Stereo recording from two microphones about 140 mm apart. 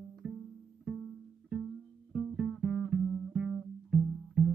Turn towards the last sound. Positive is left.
turn(degrees=-5)  # may be behind; listen again after turning